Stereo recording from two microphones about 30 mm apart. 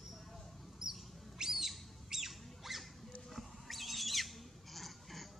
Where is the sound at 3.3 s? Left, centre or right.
Centre.